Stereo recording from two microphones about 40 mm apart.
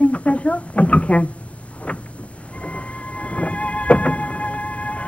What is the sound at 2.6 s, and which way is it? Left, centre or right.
Music, left.